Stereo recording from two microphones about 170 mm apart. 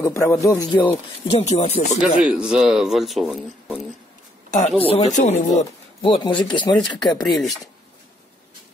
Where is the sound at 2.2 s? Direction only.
5° right (ahead or behind).